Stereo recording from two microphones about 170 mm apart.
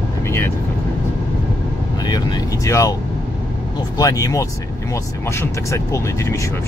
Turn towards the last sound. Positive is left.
turn(degrees=15)  # may be behind; listen again after turning